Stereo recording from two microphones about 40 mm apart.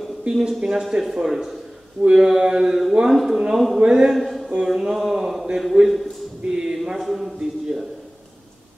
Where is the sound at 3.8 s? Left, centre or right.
Centre.